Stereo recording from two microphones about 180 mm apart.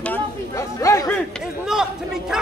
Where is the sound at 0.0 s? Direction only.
15° left (ahead or behind).